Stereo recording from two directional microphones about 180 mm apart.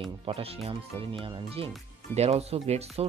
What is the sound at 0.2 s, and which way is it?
Speech, 35° right (ahead or behind).